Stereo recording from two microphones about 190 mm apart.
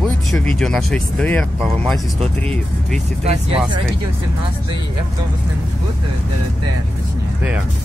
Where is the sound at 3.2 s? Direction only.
35° right (ahead or behind).